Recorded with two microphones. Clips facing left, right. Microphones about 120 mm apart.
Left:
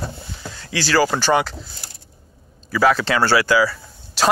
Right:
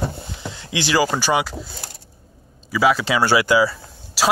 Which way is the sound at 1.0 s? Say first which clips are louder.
Left 2 dB; 5° right (ahead or behind).